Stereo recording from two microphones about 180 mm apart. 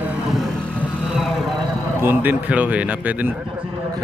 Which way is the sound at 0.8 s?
5° right (ahead or behind).